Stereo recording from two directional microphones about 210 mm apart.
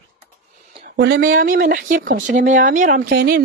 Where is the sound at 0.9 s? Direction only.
50° right (ahead or behind).